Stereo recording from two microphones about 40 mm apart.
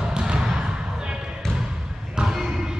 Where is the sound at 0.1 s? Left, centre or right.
Right.